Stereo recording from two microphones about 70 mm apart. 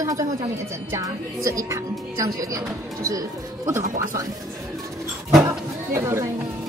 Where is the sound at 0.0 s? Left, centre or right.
Right.